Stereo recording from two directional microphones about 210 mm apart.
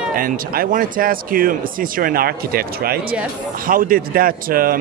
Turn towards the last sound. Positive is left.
turn(degrees=-45)  # may be behind; listen again after turning